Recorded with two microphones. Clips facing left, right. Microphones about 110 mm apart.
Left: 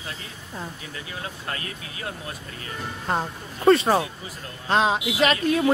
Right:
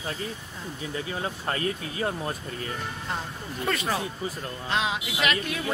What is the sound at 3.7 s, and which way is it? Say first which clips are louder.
Speech: left 11 dB; 30° left (ahead or behind).